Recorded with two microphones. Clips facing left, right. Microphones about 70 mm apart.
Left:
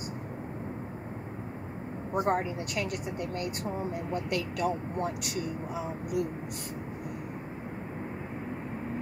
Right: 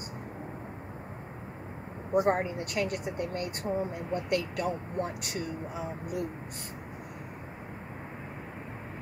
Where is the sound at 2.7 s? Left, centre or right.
Right.